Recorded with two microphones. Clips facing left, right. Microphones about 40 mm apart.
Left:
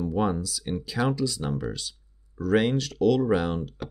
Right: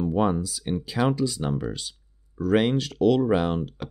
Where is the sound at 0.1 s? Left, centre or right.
Centre.